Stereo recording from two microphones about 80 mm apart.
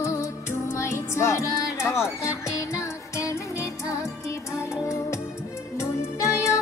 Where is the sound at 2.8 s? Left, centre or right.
Left.